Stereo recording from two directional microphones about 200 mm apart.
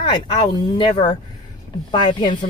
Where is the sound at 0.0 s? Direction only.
20° left (ahead or behind).